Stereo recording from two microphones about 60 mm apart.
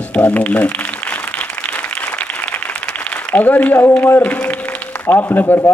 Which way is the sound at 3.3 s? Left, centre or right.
Left.